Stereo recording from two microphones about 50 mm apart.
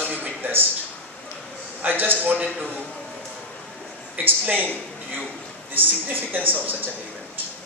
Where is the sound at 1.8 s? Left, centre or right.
Right.